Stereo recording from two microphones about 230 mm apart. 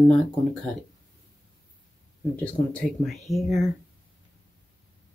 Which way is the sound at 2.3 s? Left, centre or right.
Centre.